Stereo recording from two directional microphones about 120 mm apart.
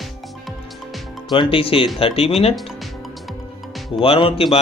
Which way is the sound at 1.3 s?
45° left (ahead or behind).